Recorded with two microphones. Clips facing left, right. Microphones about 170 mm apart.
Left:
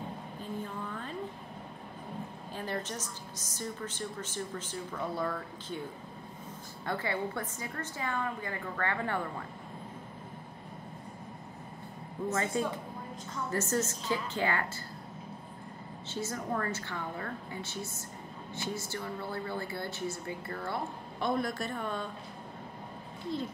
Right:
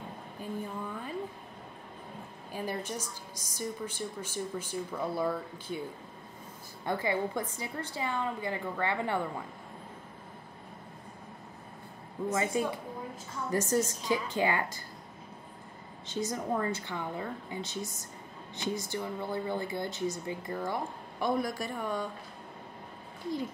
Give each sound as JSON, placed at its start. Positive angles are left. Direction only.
{"t": 0.4, "sound": "a sound", "side_deg": -10}
{"t": 2.5, "sound": "speech", "side_deg": -10}
{"t": 6.9, "sound": "speech", "side_deg": -15}
{"t": 12.3, "sound": "speech", "side_deg": -15}
{"t": 16.1, "sound": "speech", "side_deg": -15}